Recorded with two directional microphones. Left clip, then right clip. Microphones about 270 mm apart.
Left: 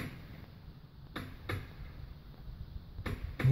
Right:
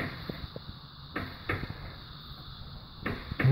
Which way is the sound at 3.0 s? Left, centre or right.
Centre.